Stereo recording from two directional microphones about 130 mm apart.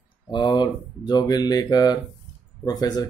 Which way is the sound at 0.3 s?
35° left (ahead or behind).